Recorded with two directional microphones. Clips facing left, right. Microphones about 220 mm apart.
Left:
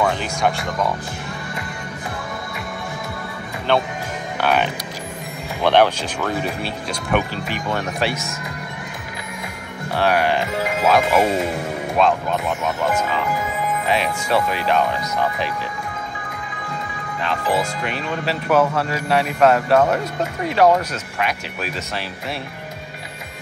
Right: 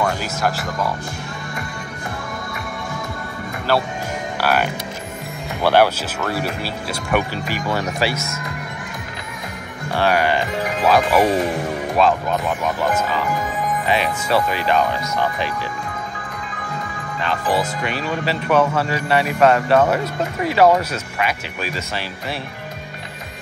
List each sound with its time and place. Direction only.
0.0 s speech: 5° right (ahead or behind)
3.7 s speech: 5° right (ahead or behind)
9.9 s speech: centre (ahead or behind)
11.1 s speech: 25° left (ahead or behind)
12.0 s speech: 5° right (ahead or behind)
17.2 s speech: centre (ahead or behind)